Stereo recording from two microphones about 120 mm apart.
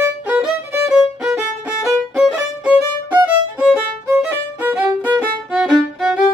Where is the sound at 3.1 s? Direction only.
10° right (ahead or behind).